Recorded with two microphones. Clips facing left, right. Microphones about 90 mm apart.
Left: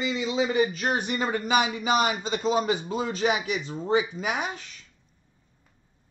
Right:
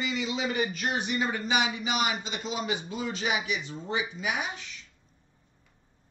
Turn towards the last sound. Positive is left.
turn(degrees=40)  # may be behind; listen again after turning